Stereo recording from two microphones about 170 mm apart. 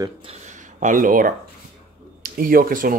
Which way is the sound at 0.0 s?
30° right (ahead or behind).